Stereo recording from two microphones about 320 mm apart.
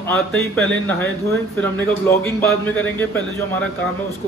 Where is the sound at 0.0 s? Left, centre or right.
Centre.